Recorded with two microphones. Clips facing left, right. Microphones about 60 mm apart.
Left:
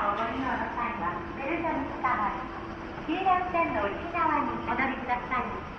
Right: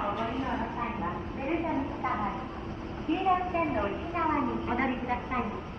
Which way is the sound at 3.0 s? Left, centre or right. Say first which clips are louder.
Left 1 dB; left.